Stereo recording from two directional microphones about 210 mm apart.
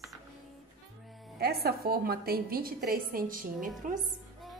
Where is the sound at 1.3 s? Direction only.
50° right (ahead or behind).